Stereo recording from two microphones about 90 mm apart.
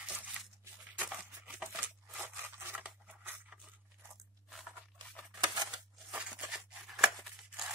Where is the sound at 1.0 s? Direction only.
15° right (ahead or behind).